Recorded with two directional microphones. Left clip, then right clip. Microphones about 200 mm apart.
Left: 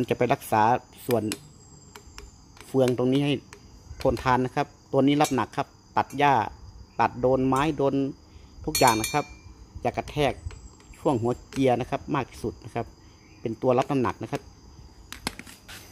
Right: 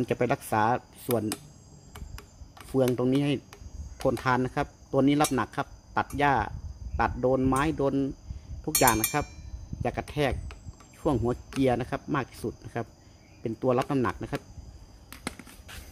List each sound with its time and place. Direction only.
0.0 s speech: 5° left (ahead or behind)
2.7 s speech: 5° left (ahead or behind)
15.0 s a sound: 25° left (ahead or behind)